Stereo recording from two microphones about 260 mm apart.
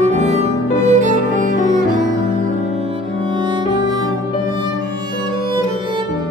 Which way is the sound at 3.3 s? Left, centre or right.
Centre.